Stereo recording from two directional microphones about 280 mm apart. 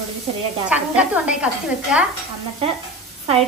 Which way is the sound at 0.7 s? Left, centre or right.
Centre.